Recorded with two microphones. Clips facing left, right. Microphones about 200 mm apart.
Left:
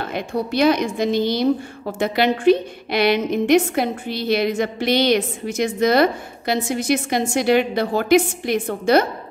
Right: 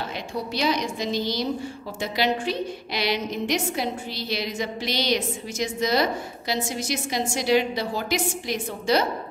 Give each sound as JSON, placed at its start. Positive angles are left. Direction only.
{"t": 0.1, "sound": "a woman's voice", "side_deg": 55}